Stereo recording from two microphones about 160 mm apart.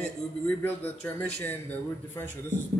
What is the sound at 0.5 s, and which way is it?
Speech, 10° left (ahead or behind).